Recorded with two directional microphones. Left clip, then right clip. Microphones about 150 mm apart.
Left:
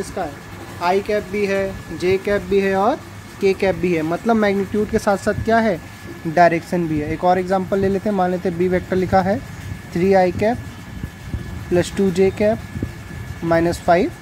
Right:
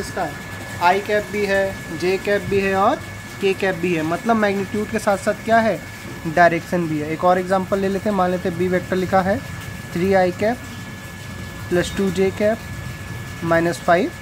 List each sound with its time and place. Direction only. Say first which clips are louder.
0.2 s speech: right 1 dB; 20° left (ahead or behind)
11.7 s speech: left 2 dB; 15° left (ahead or behind)